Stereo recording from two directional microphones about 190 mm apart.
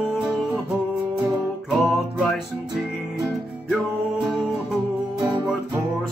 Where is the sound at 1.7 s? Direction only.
Centre (ahead or behind).